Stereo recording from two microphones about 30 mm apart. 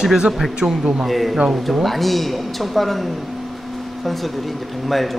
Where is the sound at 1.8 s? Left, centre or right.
Centre.